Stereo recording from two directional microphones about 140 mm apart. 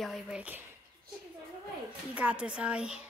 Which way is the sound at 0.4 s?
15° right (ahead or behind).